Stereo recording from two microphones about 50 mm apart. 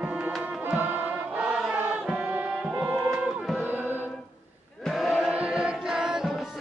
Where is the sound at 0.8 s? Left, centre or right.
Right.